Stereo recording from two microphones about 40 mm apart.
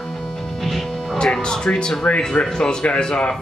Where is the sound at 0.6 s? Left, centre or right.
Centre.